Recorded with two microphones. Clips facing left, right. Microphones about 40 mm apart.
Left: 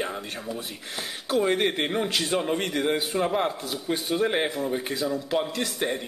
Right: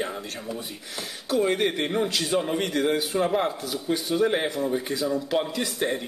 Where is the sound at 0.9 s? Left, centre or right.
Left.